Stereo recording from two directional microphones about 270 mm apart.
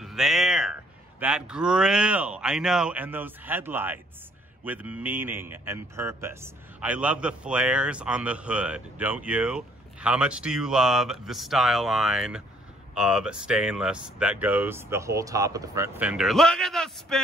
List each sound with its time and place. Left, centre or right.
0.0 s music: centre
1.2 s speech: centre